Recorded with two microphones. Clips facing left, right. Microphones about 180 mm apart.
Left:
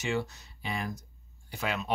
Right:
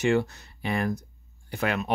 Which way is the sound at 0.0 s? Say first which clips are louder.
Right 8 dB; 60° right (ahead or behind).